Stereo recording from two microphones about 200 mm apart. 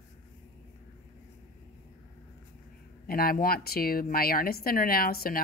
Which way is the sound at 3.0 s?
45° left (ahead or behind).